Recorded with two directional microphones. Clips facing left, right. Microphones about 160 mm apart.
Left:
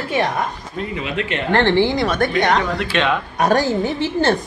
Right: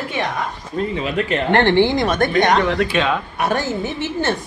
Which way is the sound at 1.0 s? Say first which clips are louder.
Right 1 dB; 40° right (ahead or behind).